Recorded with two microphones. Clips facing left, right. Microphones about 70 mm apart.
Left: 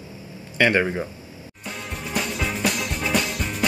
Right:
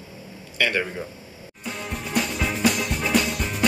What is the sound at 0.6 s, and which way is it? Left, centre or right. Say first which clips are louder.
Speech: left 5 dB; left.